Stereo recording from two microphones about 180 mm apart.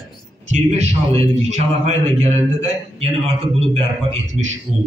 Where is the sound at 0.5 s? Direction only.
40° right (ahead or behind).